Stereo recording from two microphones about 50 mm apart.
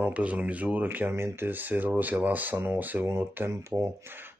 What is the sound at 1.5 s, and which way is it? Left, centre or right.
Speech, right.